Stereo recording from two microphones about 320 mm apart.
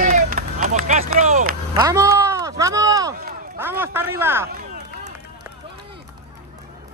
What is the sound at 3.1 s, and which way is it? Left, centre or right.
Speech, right.